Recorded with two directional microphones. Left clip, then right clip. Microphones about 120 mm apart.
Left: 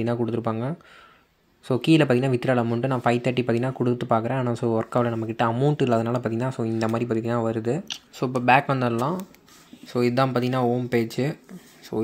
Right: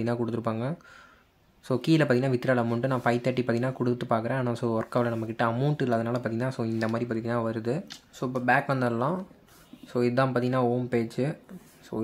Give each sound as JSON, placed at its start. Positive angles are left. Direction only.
{"t": 0.0, "sound": "speech", "side_deg": 10}
{"t": 5.8, "sound": "speech", "side_deg": 25}
{"t": 8.2, "sound": "speech", "side_deg": 30}
{"t": 8.6, "sound": "speech", "side_deg": 20}